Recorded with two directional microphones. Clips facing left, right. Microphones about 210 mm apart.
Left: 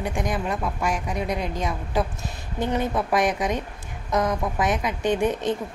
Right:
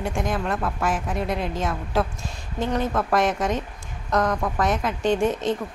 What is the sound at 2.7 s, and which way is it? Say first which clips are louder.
Speech: even; 20° left (ahead or behind).